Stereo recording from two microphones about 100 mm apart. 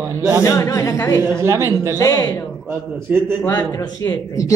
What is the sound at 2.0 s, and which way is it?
Speech, 40° left (ahead or behind).